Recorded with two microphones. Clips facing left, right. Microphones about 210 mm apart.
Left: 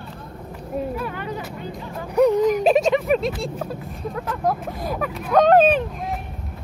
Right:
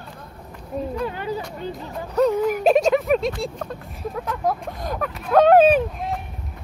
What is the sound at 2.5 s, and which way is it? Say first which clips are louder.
Speech: even; centre (ahead or behind).